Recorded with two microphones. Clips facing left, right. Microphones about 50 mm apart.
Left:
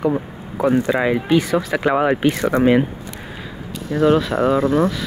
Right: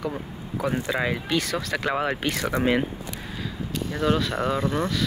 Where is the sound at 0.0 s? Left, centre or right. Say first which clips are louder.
Left 10 dB; left.